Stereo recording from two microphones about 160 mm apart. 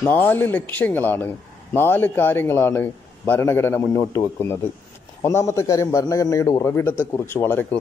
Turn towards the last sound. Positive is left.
turn(degrees=15)  # may be behind; listen again after turning